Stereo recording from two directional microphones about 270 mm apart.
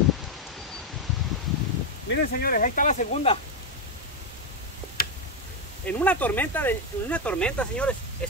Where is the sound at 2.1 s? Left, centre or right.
Left.